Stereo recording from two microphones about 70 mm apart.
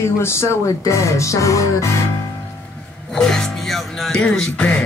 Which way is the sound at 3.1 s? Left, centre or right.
Centre.